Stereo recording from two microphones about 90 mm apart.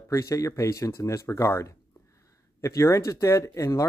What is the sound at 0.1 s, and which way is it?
Speech, 35° left (ahead or behind).